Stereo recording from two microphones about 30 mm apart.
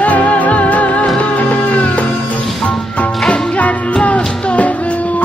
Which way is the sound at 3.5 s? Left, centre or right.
Left.